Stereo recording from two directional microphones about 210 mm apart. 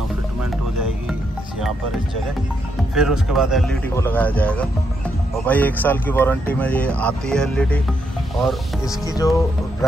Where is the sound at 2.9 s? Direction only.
5° right (ahead or behind).